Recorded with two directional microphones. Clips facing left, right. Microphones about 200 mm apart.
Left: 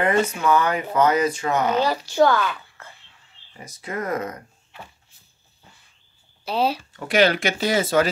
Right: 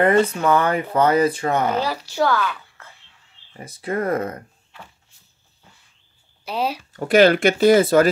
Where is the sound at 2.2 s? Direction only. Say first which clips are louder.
Left 1 dB; 20° left (ahead or behind).